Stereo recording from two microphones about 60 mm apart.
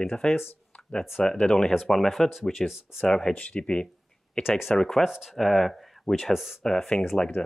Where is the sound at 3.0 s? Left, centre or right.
Centre.